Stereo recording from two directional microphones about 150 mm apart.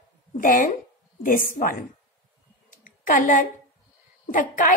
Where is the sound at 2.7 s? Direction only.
65° left (ahead or behind).